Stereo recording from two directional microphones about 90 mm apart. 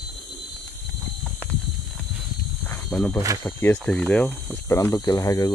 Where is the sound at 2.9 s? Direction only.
15° left (ahead or behind).